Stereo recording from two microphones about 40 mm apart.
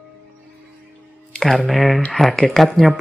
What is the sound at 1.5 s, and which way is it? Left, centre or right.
Speech, centre.